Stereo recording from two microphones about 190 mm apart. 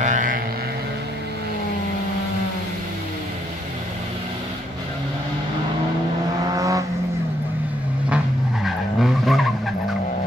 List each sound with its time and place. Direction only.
0.0 s vehicle: 45° right (ahead or behind)
6.5 s vehicle: 15° right (ahead or behind)
8.6 s vehicle: centre (ahead or behind)